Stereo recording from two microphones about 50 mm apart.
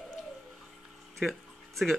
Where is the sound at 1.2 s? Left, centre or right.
Centre.